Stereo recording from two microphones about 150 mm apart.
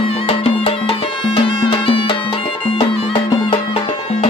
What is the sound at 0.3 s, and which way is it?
Music, 40° left (ahead or behind).